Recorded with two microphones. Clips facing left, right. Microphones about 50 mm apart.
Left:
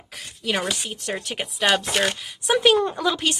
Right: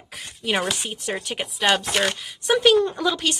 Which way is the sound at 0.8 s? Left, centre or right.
Centre.